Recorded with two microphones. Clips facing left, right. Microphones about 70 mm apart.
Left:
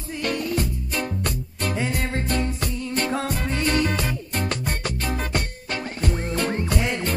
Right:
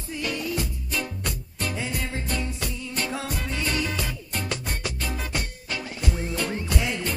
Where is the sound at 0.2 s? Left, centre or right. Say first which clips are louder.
Left 4 dB; left.